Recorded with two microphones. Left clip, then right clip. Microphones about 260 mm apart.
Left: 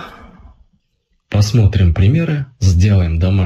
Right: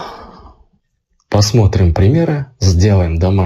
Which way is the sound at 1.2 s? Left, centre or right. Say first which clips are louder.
Right 6 dB; centre.